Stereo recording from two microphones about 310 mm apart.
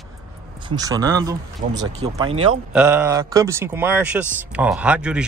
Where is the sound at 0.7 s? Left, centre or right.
Centre.